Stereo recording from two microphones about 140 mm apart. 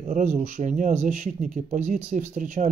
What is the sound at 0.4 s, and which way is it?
Speech, 60° right (ahead or behind).